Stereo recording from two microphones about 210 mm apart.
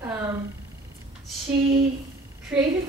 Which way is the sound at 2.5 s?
5° right (ahead or behind).